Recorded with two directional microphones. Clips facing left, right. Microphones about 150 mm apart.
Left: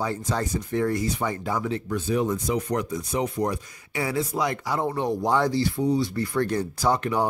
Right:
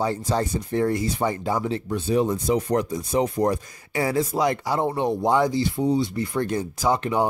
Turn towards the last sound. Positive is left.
turn(degrees=-20)  # may be behind; listen again after turning